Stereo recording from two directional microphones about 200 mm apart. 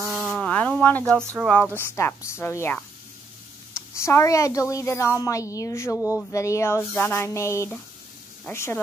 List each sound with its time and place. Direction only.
0.1 s insect: centre (ahead or behind)
1.4 s speech: 5° left (ahead or behind)
3.9 s speech: 15° left (ahead or behind)